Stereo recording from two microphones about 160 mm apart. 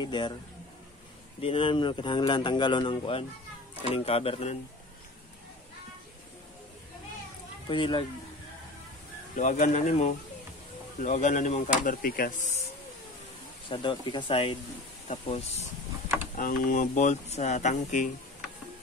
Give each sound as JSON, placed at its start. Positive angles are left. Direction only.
{"t": 0.0, "sound": "a man's voice", "side_deg": 30}
{"t": 1.4, "sound": "a man's voice", "side_deg": 35}
{"t": 7.6, "sound": "speech", "side_deg": 30}
{"t": 9.3, "sound": "speech", "side_deg": 50}
{"t": 13.7, "sound": "speech", "side_deg": 30}
{"t": 16.3, "sound": "speech", "side_deg": 55}